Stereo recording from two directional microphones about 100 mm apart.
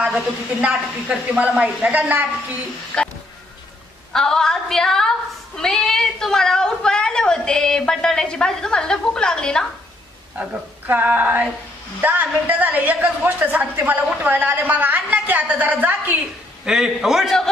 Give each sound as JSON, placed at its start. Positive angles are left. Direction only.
{"t": 0.0, "sound": "a woman's voice", "side_deg": -15}
{"t": 2.9, "sound": "music", "side_deg": 10}
{"t": 4.1, "sound": "a sound", "side_deg": 5}
{"t": 5.6, "sound": "a woman's voice", "side_deg": 5}
{"t": 10.9, "sound": "a woman's voice", "side_deg": -15}
{"t": 16.6, "sound": "a sound", "side_deg": -5}